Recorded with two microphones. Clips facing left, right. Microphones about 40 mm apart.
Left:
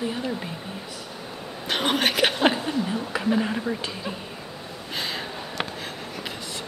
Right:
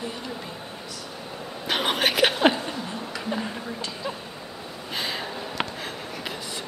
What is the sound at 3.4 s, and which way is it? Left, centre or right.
Speech, centre.